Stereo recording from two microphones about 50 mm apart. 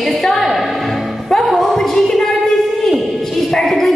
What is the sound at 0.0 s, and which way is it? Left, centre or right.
Music, centre.